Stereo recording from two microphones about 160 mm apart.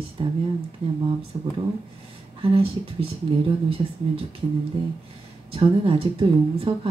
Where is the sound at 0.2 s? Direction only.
35° right (ahead or behind).